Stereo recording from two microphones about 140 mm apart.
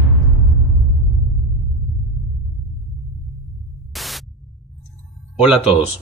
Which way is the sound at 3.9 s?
Centre (ahead or behind).